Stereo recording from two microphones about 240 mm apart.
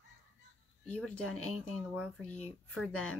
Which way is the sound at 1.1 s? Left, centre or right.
Left.